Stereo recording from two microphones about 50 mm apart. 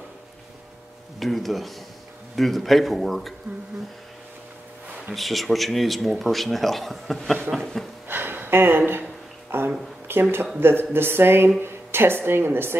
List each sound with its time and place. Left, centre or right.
1.2 s a man's voice: centre
5.1 s a man's voice: centre
8.1 s a sound: right
10.6 s a woman's voice: right